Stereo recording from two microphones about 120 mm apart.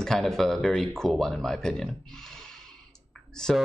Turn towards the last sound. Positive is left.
turn(degrees=5)  # may be behind; listen again after turning